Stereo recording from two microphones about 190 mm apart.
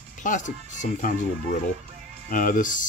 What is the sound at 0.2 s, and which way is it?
Speech, 40° left (ahead or behind).